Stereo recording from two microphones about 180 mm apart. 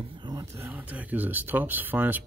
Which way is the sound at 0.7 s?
10° right (ahead or behind).